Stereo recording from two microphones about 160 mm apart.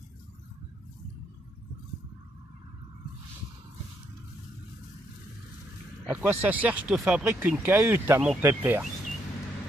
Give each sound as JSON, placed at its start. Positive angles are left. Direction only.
{"t": 6.0, "sound": "speech", "side_deg": -10}